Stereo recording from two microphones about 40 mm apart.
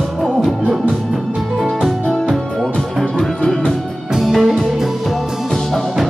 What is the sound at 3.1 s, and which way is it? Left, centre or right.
Music, left.